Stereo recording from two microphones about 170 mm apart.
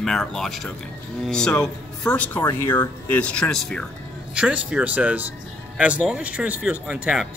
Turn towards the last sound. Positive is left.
turn(degrees=-5)  # may be behind; listen again after turning